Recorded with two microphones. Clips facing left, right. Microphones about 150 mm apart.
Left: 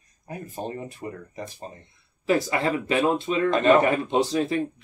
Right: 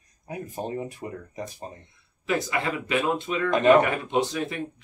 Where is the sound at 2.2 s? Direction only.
35° left (ahead or behind).